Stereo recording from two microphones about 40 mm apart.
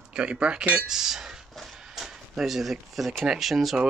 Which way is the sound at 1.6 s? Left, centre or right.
Centre.